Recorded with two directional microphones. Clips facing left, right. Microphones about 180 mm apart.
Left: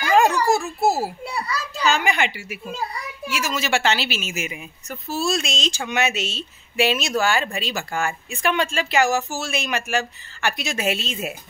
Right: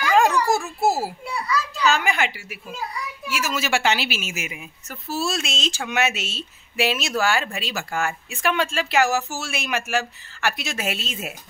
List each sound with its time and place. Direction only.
0.6 s speech: 5° right (ahead or behind)
1.2 s children playing: 30° left (ahead or behind)
1.9 s speech: 5° right (ahead or behind)